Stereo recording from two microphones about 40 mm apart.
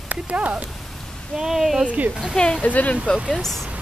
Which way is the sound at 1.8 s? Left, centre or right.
Right.